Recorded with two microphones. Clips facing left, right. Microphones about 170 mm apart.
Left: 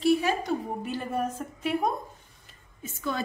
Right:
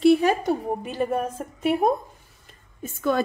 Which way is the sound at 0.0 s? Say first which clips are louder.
Right 6 dB; 60° right (ahead or behind).